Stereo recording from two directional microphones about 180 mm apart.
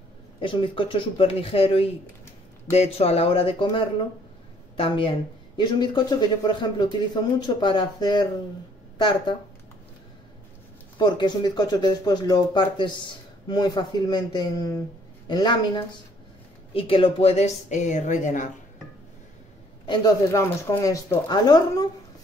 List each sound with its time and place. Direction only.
0.4 s a woman's voice: 30° left (ahead or behind)
4.7 s a woman's voice: 30° left (ahead or behind)
11.0 s a woman's voice: 25° left (ahead or behind); by 18.5 s 45° left (ahead or behind)
19.9 s speech: 20° left (ahead or behind)